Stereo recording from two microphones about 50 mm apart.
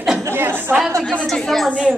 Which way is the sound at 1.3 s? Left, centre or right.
Centre.